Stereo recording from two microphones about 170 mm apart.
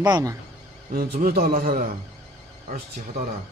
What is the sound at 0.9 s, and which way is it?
Speech, 60° right (ahead or behind).